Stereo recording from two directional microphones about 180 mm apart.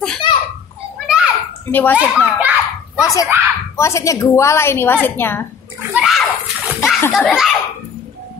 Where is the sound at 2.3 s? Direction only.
10° right (ahead or behind).